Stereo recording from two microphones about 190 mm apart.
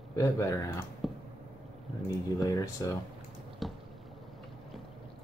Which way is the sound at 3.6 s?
Centre (ahead or behind).